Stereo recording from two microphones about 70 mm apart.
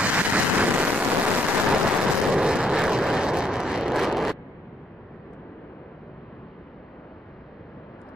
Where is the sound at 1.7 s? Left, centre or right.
Centre.